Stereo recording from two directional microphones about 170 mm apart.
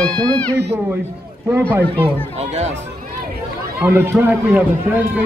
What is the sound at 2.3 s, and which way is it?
Speech, 40° right (ahead or behind).